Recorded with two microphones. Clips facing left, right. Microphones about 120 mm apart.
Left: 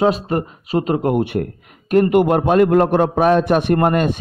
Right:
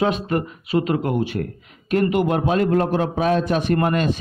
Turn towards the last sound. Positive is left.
turn(degrees=50)  # may be behind; listen again after turning